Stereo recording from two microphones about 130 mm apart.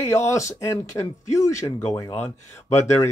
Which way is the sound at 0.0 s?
20° left (ahead or behind).